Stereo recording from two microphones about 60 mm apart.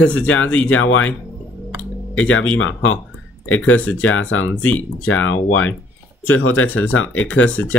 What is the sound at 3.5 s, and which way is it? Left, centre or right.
Speech, left.